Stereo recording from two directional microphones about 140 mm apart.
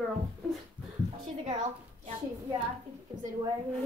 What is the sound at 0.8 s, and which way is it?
Speech, 10° right (ahead or behind).